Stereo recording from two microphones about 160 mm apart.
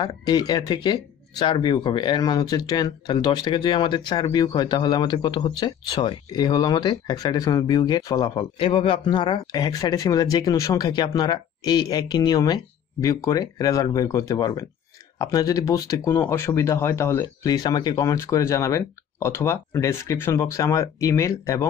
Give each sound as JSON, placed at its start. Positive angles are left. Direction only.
{"t": 0.0, "sound": "speech", "side_deg": 25}